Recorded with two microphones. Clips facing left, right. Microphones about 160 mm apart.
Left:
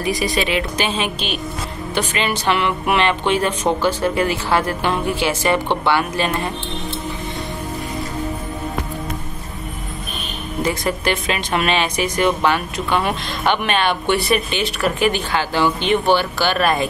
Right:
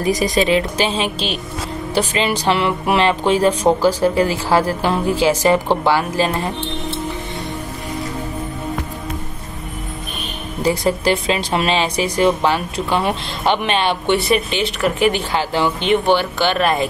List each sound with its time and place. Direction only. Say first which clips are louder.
0.0 s a woman's voice: right 4 dB; 45° right (ahead or behind)
10.6 s speech: right 4 dB; 35° right (ahead or behind); by 16.8 s 20° right (ahead or behind)